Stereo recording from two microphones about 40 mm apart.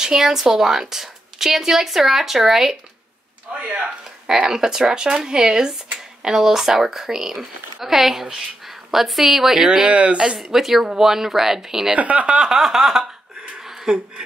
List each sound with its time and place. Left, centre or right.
0.0 s a woman's voice: centre
3.5 s speech: right
4.3 s a woman's voice: centre
9.8 s speech: right
10.3 s a woman's voice: centre
11.9 s speech: right
12.3 s speech: right
12.5 s a sound: centre